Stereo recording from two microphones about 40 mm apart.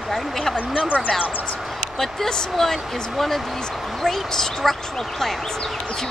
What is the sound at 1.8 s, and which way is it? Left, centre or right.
Speech, centre.